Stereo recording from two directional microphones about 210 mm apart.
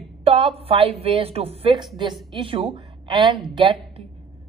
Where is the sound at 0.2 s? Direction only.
25° right (ahead or behind).